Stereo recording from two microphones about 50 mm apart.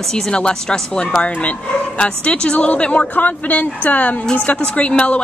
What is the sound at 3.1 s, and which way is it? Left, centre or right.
Speech, left.